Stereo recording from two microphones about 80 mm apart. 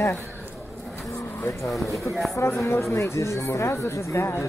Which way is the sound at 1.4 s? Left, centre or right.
Centre.